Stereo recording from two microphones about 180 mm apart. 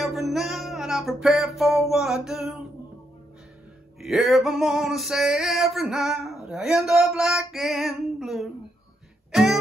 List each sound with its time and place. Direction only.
0.0 s music: centre (ahead or behind)
4.0 s male singing: centre (ahead or behind)
9.3 s throat clearing: centre (ahead or behind)